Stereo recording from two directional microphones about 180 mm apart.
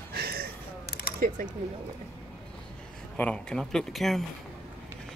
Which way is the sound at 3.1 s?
5° left (ahead or behind).